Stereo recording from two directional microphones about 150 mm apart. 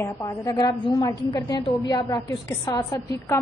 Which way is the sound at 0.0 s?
20° left (ahead or behind).